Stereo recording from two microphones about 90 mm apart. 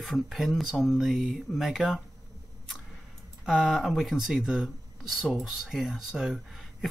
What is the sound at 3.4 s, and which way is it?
Speech, 5° right (ahead or behind).